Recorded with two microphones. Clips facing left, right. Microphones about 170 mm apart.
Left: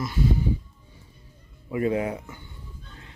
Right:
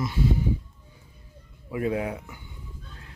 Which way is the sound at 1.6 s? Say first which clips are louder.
Left 2 dB; centre (ahead or behind).